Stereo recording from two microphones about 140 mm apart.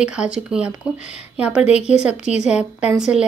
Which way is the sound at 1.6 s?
50° left (ahead or behind).